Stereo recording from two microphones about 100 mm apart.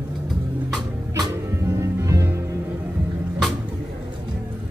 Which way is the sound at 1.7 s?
30° right (ahead or behind).